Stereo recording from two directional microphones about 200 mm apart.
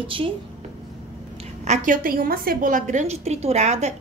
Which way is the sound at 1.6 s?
40° right (ahead or behind).